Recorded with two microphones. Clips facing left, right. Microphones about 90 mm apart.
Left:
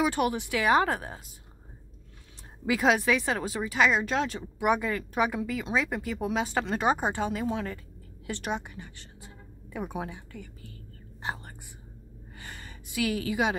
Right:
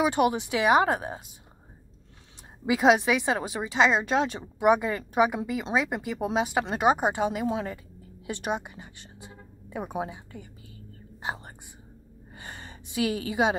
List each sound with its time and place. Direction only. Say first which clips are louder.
0.0 s speech: right 3 dB; 20° right (ahead or behind)
2.6 s speech: right 3 dB; 20° right (ahead or behind)
8.3 s a sound: right 2 dB; 15° right (ahead or behind)
9.9 s a woman's voice: right 3 dB; 20° right (ahead or behind)
12.4 s gasp: right 2 dB; 25° right (ahead or behind)